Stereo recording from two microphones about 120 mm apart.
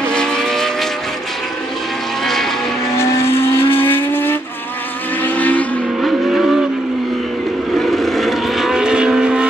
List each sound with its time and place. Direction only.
0.0 s vehicle: 5° left (ahead or behind)
2.2 s vehicle: 5° left (ahead or behind)
3.0 s vehicle: 20° left (ahead or behind)
3.3 s vehicle: 50° left (ahead or behind)
3.8 s vehicle: 15° left (ahead or behind)
5.9 s vehicle: centre (ahead or behind)
7.7 s vehicle: centre (ahead or behind)